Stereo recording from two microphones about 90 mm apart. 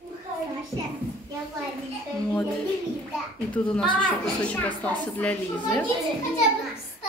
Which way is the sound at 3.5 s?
15° left (ahead or behind).